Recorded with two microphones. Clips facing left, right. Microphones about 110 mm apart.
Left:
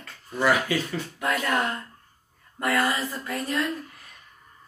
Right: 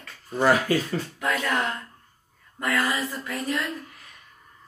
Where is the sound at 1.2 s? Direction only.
15° left (ahead or behind).